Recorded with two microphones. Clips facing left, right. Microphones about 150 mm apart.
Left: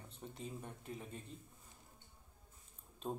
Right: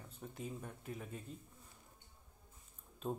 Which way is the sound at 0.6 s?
25° left (ahead or behind).